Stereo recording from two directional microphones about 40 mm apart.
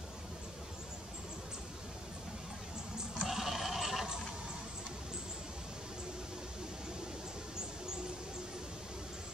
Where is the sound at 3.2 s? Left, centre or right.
Centre.